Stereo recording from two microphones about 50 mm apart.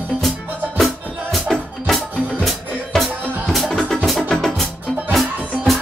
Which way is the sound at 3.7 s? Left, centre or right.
Centre.